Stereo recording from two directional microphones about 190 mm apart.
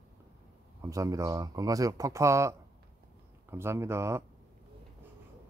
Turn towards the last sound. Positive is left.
turn(degrees=-15)  # may be behind; listen again after turning